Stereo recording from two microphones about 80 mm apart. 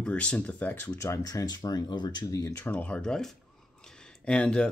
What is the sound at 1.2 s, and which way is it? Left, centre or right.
Speech, left.